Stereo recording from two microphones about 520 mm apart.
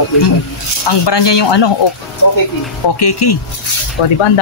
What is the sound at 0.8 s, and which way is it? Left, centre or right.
Speech, left.